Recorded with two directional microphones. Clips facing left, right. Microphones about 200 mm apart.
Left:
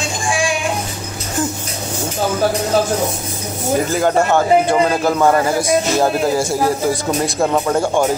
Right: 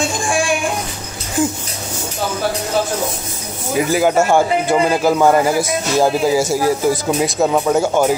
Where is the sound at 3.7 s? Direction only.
5° right (ahead or behind).